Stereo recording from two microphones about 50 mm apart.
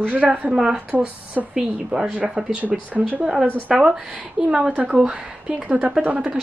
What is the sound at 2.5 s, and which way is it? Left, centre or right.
Speech, right.